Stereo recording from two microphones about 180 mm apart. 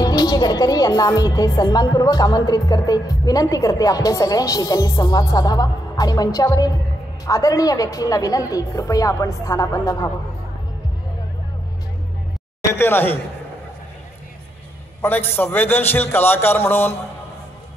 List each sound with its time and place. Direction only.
0.0 s a woman's voice: 20° left (ahead or behind)
12.7 s a man's voice: 10° left (ahead or behind)
15.0 s a man's voice: 10° left (ahead or behind)